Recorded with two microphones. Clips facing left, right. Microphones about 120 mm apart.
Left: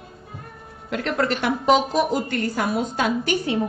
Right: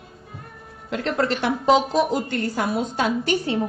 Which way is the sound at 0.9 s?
25° right (ahead or behind).